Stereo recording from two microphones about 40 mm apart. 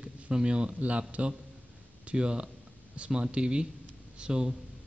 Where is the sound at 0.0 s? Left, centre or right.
Right.